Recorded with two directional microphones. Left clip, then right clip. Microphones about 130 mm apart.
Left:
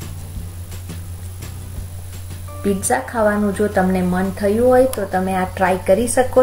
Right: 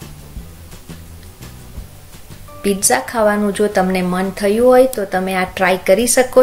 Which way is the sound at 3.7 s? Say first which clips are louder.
Right 2 dB; 20° right (ahead or behind).